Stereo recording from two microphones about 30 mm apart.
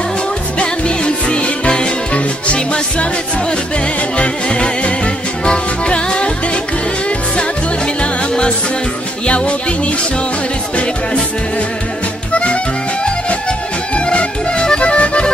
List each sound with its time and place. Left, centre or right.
0.6 s music: left
5.9 s music: left
12.3 s music: left
13.9 s music: left